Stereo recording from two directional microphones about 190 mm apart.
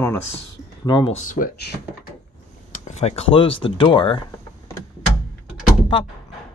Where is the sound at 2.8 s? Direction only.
35° left (ahead or behind).